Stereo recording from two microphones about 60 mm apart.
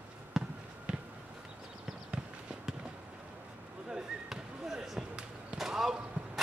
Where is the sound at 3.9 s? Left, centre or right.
Centre.